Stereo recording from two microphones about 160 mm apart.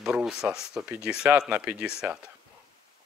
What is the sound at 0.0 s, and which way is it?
Speech, 5° right (ahead or behind).